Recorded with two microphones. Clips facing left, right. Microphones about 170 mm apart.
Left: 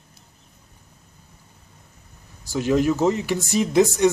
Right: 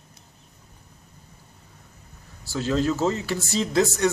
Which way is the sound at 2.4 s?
15° left (ahead or behind).